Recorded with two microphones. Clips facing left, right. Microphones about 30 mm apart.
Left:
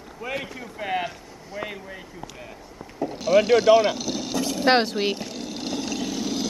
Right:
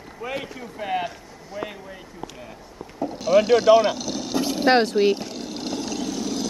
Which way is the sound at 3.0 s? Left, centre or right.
Centre.